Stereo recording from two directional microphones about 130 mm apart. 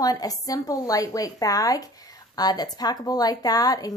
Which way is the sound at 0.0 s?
30° left (ahead or behind).